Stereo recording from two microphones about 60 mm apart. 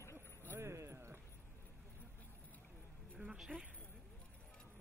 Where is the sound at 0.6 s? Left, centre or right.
Right.